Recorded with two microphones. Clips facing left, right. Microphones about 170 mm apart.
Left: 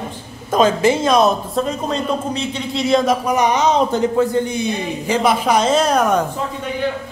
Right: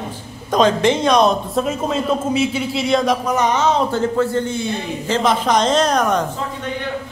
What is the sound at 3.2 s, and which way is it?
A man's voice, 15° left (ahead or behind).